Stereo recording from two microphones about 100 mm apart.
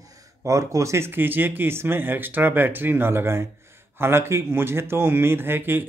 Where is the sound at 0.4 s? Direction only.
30° right (ahead or behind).